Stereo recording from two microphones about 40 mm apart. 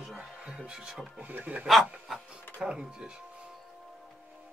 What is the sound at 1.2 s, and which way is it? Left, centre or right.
Speech, right.